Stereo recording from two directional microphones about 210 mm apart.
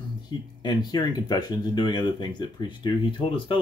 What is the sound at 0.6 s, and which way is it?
Speech, 20° left (ahead or behind).